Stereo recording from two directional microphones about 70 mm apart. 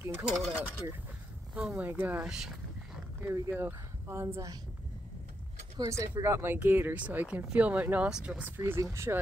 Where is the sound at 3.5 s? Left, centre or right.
Right.